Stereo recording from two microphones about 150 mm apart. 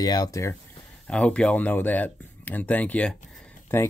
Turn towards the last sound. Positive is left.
turn(degrees=10)  # may be behind; listen again after turning